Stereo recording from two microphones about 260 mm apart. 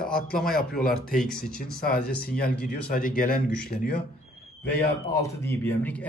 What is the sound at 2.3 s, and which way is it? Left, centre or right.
Speech, left.